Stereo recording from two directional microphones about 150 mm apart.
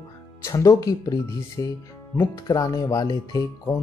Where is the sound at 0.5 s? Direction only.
25° left (ahead or behind).